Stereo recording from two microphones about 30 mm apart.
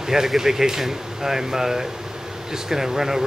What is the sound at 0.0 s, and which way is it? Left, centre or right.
Speech, centre.